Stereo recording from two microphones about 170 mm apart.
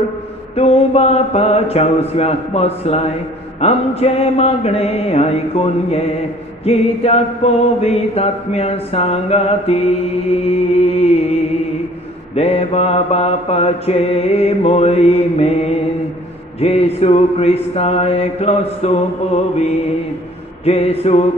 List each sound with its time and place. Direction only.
0.6 s music: 35° left (ahead or behind)